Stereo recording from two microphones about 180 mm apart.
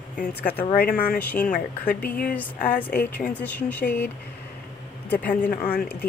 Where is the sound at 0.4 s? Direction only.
10° left (ahead or behind).